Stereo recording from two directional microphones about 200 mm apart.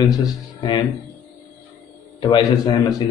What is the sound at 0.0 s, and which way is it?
Speech, 20° left (ahead or behind).